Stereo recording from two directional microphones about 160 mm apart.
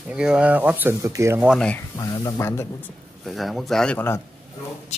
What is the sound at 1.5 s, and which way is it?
Speech, 5° left (ahead or behind).